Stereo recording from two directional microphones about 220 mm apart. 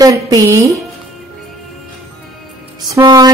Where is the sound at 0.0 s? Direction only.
15° right (ahead or behind).